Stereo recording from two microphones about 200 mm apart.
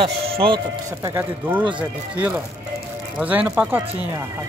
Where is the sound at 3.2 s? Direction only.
10° right (ahead or behind).